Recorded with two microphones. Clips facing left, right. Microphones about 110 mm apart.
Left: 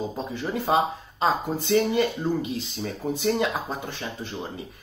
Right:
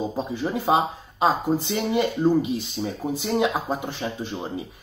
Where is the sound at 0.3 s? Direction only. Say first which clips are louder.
Right 2 dB; 15° right (ahead or behind).